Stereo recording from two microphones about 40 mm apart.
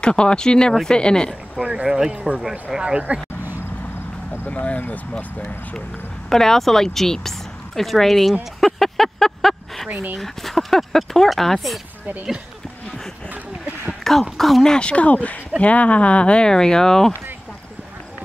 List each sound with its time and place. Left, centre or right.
0.0 s speech: left
1.6 s speech: right
2.7 s speech: centre
3.1 s speech: right
4.5 s speech: left
6.3 s speech: centre
8.3 s a sound: centre
9.8 s speech: right
10.2 s speech: centre
14.3 s speech: centre
14.7 s speech: left